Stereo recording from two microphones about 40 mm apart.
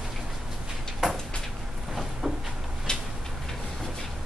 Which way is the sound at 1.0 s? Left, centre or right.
Centre.